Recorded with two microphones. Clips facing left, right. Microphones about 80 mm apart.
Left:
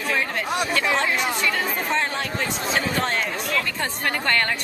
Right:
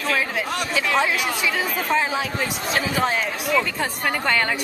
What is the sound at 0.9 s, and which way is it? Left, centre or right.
Speech, centre.